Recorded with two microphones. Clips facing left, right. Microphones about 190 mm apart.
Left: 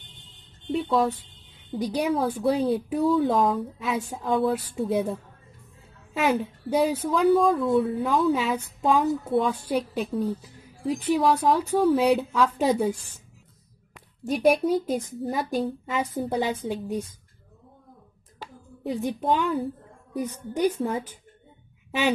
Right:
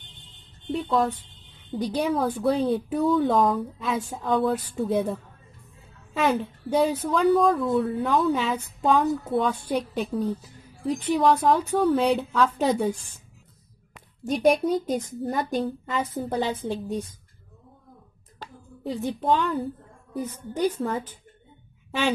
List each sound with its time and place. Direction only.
0.7 s a woman's voice: centre (ahead or behind)
14.2 s a woman's voice: 5° left (ahead or behind)
18.4 s a woman's voice: 10° left (ahead or behind)